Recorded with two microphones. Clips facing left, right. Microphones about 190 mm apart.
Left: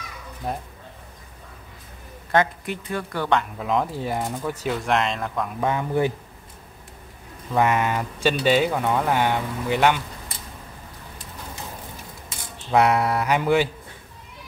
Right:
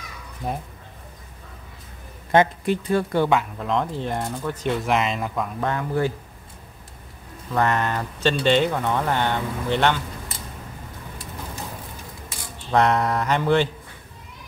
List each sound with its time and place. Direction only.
0.4 s speech: 5° left (ahead or behind)
2.3 s speech: 30° right (ahead or behind)
3.3 s speech: centre (ahead or behind)
5.6 s speech: 15° left (ahead or behind)
7.5 s speech: 10° left (ahead or behind)
12.7 s speech: 10° left (ahead or behind)